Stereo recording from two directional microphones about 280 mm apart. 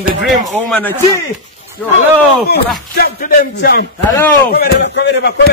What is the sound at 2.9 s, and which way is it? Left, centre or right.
A man's voice, left.